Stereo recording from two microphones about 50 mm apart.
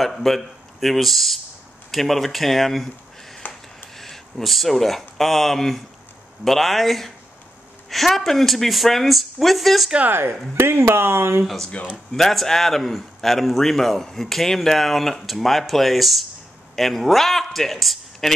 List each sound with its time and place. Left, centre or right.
0.0 s a man's voice: centre
3.4 s a sound: left
3.9 s a man's voice: centre
10.0 s speech: right
11.4 s a man's voice: centre